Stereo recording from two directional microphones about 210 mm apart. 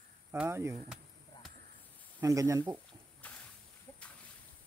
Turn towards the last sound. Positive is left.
turn(degrees=5)  # may be behind; listen again after turning